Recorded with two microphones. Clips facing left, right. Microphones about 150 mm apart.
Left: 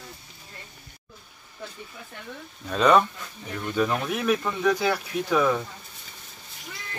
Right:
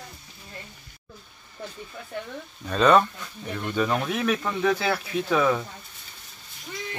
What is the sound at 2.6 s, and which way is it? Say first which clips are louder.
Speech: right 1 dB; 5° left (ahead or behind).